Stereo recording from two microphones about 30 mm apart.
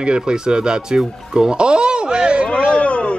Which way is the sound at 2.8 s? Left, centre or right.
Left.